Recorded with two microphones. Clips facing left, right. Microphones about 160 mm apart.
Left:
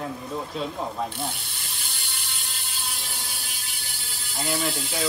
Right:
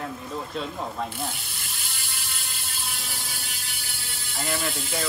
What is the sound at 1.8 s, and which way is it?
Mechanisms, centre (ahead or behind).